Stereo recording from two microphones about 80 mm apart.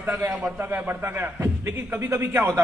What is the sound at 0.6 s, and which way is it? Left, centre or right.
A man's voice, right.